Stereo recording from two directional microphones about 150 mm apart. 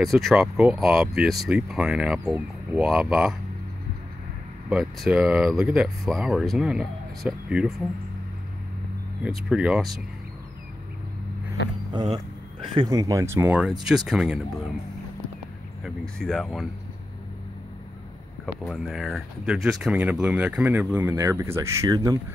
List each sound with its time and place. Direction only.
0.0 s speech: centre (ahead or behind)
4.6 s speech: centre (ahead or behind)
9.2 s speech: 5° right (ahead or behind)
11.9 s speech: 30° right (ahead or behind)
13.8 s speech: 5° right (ahead or behind)
15.8 s speech: 5° left (ahead or behind)
18.4 s speech: centre (ahead or behind); by 22.2 s 25° right (ahead or behind)